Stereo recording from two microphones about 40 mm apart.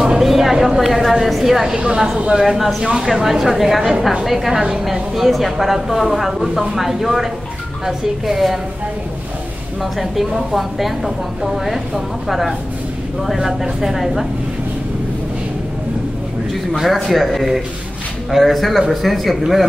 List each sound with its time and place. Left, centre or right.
0.2 s a sound: centre
1.1 s a woman's voice: centre
1.7 s speech: right
2.3 s a woman's voice: centre
9.9 s a woman's voice: centre
16.7 s a woman's voice: centre